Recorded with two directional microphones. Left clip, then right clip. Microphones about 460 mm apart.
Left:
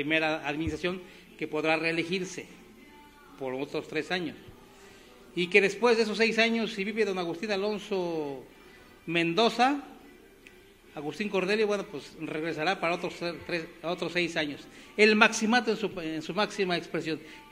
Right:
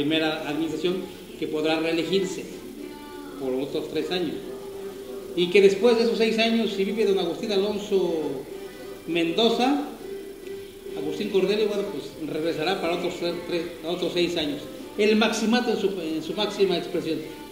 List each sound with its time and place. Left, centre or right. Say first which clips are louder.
0.0 s a man's voice: right 3 dB; left
3.7 s a man's voice: right 4 dB; left
5.3 s a man's voice: right 6 dB; left
9.1 s a man's voice: right 3 dB; left
11.1 s a man's voice: right 4 dB; left